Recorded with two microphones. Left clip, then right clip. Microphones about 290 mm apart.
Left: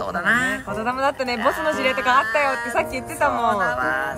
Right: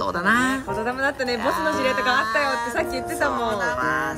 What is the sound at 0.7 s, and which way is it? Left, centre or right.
Speech, centre.